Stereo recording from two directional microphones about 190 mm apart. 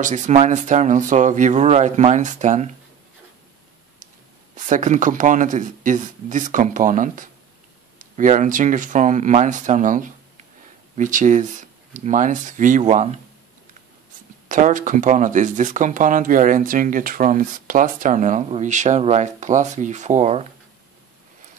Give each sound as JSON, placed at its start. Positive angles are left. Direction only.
{"t": 0.0, "sound": "speech", "side_deg": -40}
{"t": 4.6, "sound": "speech", "side_deg": -40}
{"t": 14.5, "sound": "speech", "side_deg": -45}